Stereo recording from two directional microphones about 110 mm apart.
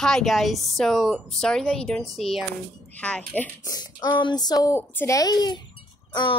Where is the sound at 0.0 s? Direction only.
5° left (ahead or behind).